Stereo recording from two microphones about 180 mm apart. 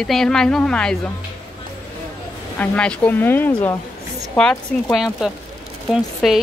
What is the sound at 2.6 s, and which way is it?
Speech, 5° left (ahead or behind).